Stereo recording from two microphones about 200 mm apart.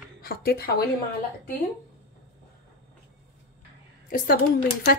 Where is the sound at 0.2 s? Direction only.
50° left (ahead or behind).